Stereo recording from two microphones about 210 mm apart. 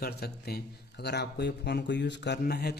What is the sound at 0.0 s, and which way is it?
A man's voice, 50° left (ahead or behind).